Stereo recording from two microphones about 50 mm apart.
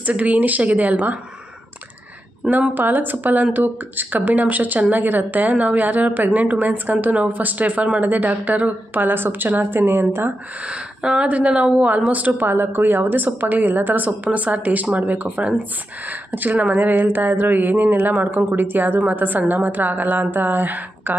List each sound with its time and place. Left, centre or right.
0.0 s speech: right
2.5 s speech: right
10.7 s speech: centre
12.5 s speech: right
16.1 s speech: right